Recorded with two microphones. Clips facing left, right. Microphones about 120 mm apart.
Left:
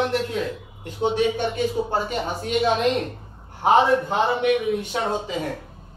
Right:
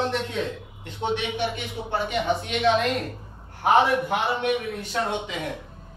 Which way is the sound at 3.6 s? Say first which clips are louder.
Left 2 dB; 25° left (ahead or behind).